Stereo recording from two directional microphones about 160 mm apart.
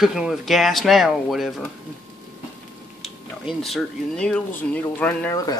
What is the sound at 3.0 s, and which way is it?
Speech, centre (ahead or behind).